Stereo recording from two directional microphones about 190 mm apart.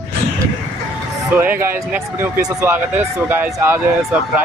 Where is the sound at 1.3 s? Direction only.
10° right (ahead or behind).